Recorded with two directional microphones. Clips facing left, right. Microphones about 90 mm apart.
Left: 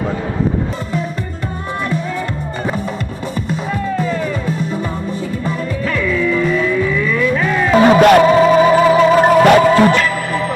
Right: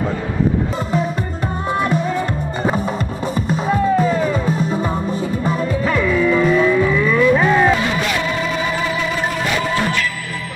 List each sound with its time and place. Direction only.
3.4 s music: 20° right (ahead or behind)
7.8 s music: 55° left (ahead or behind)